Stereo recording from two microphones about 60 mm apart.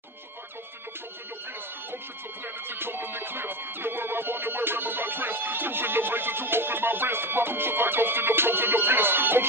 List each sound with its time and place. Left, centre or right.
2.4 s music: right